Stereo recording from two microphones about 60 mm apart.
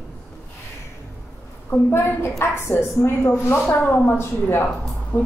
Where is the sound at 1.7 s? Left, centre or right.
Left.